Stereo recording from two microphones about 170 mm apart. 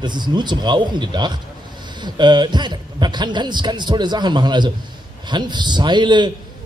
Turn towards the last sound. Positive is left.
turn(degrees=-25)  # may be behind; listen again after turning